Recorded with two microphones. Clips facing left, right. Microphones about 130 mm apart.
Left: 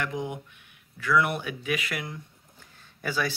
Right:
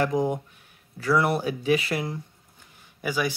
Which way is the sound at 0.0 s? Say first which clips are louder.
Right 8 dB; 35° right (ahead or behind).